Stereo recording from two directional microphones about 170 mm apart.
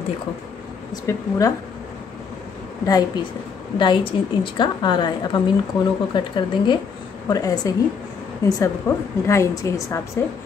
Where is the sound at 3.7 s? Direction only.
30° left (ahead or behind).